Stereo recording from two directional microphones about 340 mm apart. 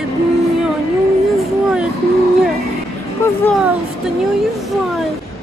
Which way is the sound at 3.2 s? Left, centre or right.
Centre.